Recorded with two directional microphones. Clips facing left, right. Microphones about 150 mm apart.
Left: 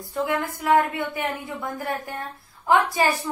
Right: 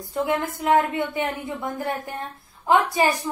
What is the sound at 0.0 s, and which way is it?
A woman's voice, 20° right (ahead or behind).